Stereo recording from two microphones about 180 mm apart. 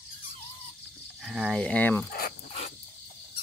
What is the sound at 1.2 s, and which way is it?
Speech, centre (ahead or behind).